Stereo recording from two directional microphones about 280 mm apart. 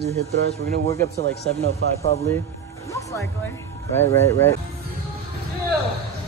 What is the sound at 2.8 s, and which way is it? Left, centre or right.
Music, centre.